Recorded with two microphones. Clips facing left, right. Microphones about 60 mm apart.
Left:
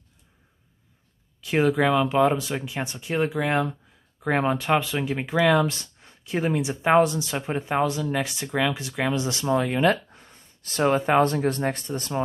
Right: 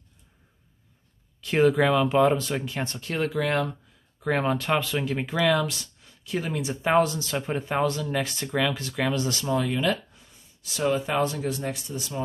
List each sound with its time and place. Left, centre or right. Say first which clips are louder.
1.4 s speech: right 1 dB; centre
5.7 s speech: left 4 dB; left